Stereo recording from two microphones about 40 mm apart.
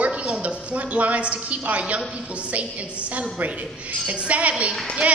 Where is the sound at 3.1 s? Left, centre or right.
Right.